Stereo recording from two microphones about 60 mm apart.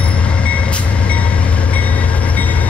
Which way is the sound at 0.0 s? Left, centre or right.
Centre.